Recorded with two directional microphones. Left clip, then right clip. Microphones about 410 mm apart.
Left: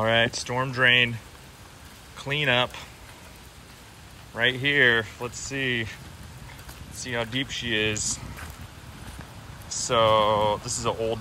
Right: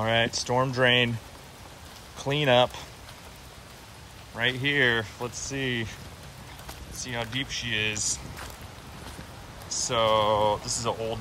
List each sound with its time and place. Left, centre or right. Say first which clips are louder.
0.0 s speech: left 3 dB; centre
2.1 s speech: right 2 dB; centre
4.4 s speech: left 3 dB; centre
7.0 s speech: left 3 dB; centre
9.7 s speech: left 3 dB; centre